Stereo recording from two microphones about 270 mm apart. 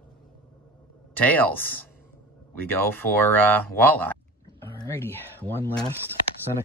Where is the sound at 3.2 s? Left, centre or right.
Centre.